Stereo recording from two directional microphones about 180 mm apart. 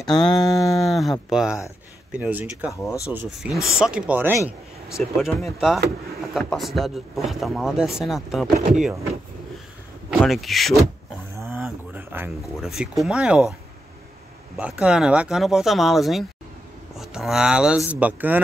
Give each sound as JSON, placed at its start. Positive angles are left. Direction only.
{"t": 0.1, "sound": "a sound", "side_deg": 25}
{"t": 0.7, "sound": "speech", "side_deg": 0}
{"t": 8.5, "sound": "speech", "side_deg": -40}
{"t": 10.2, "sound": "speech", "side_deg": 0}
{"t": 11.3, "sound": "a sound", "side_deg": -10}
{"t": 12.5, "sound": "speech", "side_deg": 0}
{"t": 14.6, "sound": "speech", "side_deg": -5}